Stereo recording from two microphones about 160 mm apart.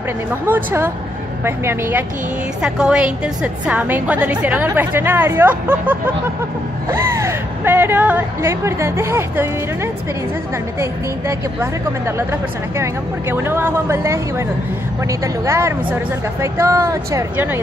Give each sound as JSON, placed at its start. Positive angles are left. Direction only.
{"t": 0.5, "sound": "a woman's voice", "side_deg": -10}
{"t": 10.8, "sound": "speech", "side_deg": -20}